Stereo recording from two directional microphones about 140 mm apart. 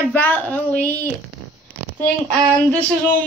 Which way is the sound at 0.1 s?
10° left (ahead or behind).